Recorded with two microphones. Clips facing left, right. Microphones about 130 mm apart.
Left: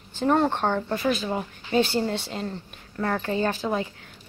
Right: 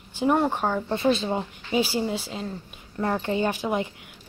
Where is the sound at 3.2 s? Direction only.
15° right (ahead or behind).